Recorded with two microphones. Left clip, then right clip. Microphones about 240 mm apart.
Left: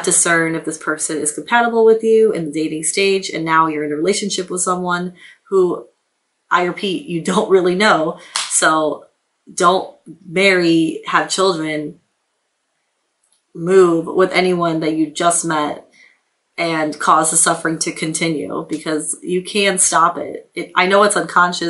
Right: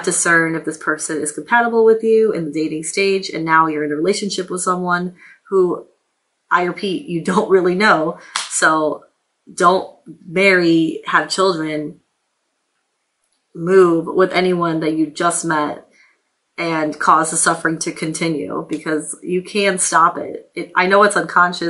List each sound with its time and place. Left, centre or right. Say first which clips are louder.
0.0 s speech: right 1 dB; centre
1.7 s speech: left 1 dB; centre
2.0 s speech: left 1 dB; centre
5.5 s speech: left 1 dB; centre
6.5 s speech: left 1 dB; centre
8.7 s speech: left 1 dB; right
10.3 s speech: even; centre
13.7 s speech: even; centre
14.1 s speech: left 1 dB; centre